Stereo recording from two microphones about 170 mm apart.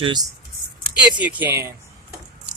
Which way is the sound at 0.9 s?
10° right (ahead or behind).